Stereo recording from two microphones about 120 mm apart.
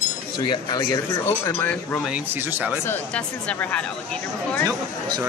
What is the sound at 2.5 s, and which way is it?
Speech, 15° right (ahead or behind).